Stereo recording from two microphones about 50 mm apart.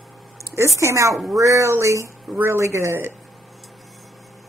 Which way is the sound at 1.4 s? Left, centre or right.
Right.